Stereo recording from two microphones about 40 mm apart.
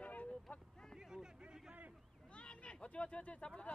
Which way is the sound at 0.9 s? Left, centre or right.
Centre.